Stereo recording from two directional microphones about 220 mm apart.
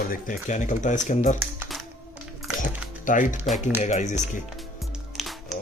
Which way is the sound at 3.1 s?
35° left (ahead or behind).